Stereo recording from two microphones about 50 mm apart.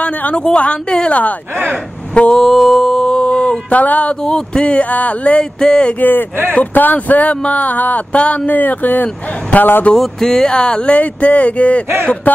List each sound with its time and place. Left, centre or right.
0.0 s a woman's voice: left
2.3 s music: centre; by 3.8 s left
3.8 s speech: left
4.1 s speech: centre
4.8 s speech: left
5.4 s a sound: centre
5.9 s speech: left
8.5 s speech: left
9.9 s speech: centre; by 11.8 s left